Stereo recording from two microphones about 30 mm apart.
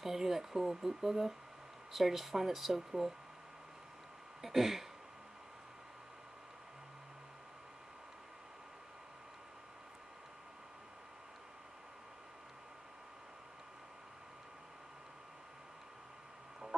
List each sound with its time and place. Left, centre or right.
0.0 s speech: centre
4.4 s speech: centre